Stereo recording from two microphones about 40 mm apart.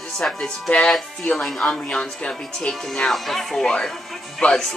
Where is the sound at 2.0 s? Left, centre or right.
Left.